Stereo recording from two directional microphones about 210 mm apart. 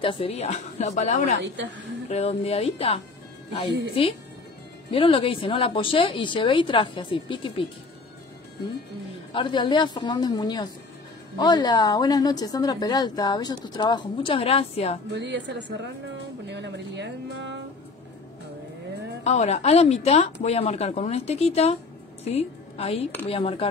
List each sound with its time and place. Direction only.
0.0 s speech: 25° left (ahead or behind)
9.3 s speech: 25° left (ahead or behind)
15.1 s speech: 55° right (ahead or behind)
19.2 s a woman's voice: 30° left (ahead or behind)